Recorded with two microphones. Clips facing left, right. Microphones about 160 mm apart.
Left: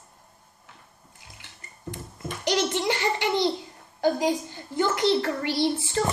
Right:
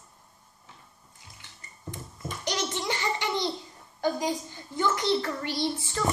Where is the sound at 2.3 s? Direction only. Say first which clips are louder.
Left 6 dB; 65° left (ahead or behind).